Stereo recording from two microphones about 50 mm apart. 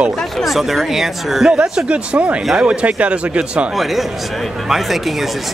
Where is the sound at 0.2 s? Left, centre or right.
Centre.